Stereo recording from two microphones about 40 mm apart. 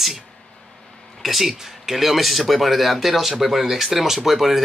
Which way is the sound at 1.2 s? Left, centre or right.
Centre.